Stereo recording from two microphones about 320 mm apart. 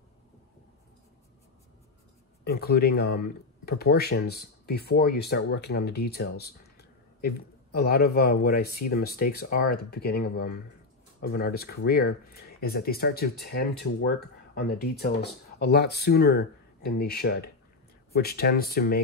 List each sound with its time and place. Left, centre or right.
2.4 s speech: left